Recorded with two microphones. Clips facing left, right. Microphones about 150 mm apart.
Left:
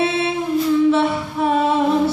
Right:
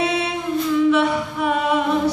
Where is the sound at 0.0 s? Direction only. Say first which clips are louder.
Left 2 dB; 30° left (ahead or behind).